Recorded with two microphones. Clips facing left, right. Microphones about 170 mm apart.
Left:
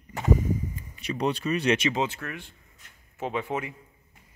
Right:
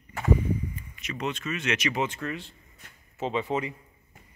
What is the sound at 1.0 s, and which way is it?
Speech, 35° left (ahead or behind).